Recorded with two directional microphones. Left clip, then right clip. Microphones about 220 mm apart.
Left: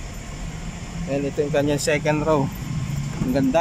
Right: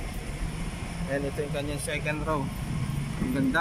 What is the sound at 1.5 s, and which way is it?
Speech, 30° left (ahead or behind).